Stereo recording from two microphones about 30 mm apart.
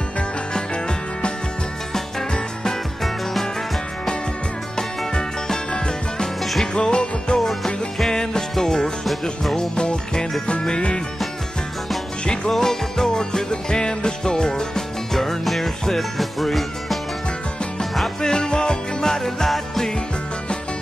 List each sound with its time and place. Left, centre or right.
0.5 s music: left
4.7 s music: centre
6.6 s music: left
7.3 s music: centre
9.6 s music: left
12.4 s music: centre
15.1 s music: centre
18.2 s music: left